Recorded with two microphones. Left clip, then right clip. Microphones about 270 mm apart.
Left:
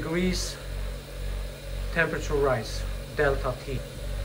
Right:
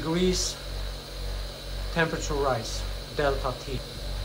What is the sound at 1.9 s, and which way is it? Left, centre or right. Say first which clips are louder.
Speech: left 1 dB; centre.